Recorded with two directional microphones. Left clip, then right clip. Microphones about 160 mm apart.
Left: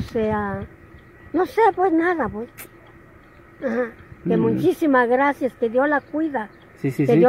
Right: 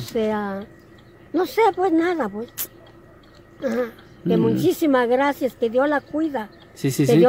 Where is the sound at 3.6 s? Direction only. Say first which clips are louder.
Even; centre (ahead or behind).